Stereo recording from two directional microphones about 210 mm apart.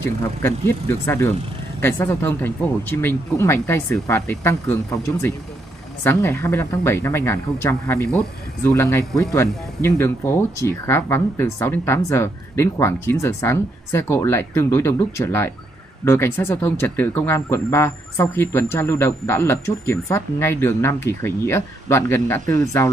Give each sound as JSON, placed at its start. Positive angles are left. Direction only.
{"t": 0.0, "sound": "speech", "side_deg": 10}
{"t": 6.0, "sound": "speech", "side_deg": 10}